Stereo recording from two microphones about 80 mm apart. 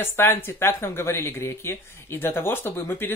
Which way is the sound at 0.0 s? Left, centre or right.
Left.